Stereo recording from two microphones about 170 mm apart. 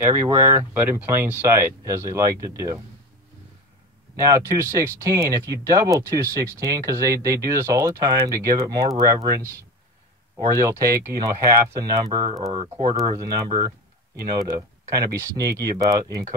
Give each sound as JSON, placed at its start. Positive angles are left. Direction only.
{"t": 0.1, "sound": "speech", "side_deg": -10}
{"t": 4.2, "sound": "speech", "side_deg": -15}